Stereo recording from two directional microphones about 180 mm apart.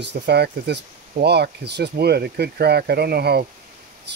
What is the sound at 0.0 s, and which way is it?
Speech, 65° right (ahead or behind).